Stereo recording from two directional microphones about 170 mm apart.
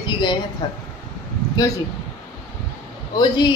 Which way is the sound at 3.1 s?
25° left (ahead or behind).